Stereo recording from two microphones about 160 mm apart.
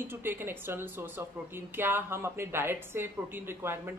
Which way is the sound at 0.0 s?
15° right (ahead or behind).